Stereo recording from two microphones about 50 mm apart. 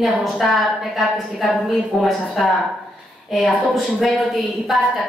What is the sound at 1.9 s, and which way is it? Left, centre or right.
Speech, left.